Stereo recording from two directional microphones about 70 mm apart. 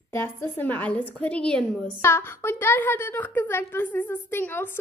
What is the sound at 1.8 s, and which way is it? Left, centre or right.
A woman's voice, left.